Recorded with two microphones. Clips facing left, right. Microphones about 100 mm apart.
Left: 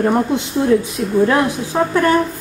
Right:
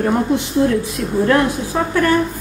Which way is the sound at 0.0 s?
20° left (ahead or behind).